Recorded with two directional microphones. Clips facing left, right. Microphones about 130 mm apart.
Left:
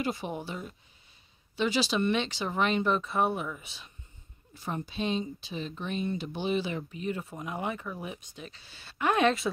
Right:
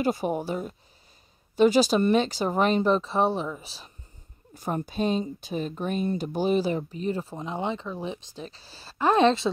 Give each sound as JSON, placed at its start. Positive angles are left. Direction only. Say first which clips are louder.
{"t": 0.0, "sound": "speech", "louder": "right 7 dB", "side_deg": -45}
{"t": 4.6, "sound": "speech", "louder": "right 6 dB", "side_deg": -45}